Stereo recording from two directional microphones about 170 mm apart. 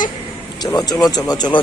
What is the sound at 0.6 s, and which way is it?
Speech, 25° left (ahead or behind).